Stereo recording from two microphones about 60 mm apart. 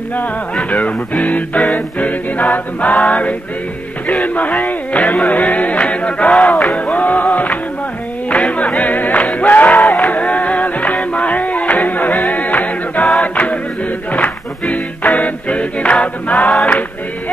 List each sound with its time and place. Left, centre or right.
0.7 s music: left
9.8 s music: centre
10.0 s music: left
13.2 s choir: left
14.1 s music: left
16.3 s a sound: centre